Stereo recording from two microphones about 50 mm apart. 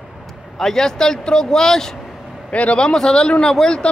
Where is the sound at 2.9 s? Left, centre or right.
Centre.